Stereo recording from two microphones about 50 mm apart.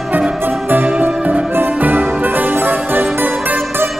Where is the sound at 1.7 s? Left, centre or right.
Right.